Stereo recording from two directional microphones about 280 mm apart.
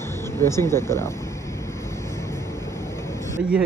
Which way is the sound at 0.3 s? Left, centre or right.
Centre.